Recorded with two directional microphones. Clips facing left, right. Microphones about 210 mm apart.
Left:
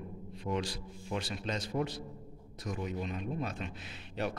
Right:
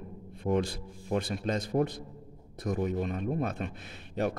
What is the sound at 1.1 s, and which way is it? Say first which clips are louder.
Speech: right 6 dB; 50° right (ahead or behind).